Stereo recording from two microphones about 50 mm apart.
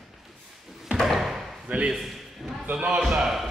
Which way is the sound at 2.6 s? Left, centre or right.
Right.